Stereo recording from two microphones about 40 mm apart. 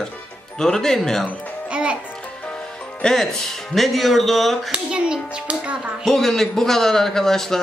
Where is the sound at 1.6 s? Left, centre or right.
Right.